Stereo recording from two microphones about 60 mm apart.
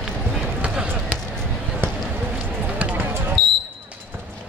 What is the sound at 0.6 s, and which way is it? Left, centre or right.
Basketball bounce, centre.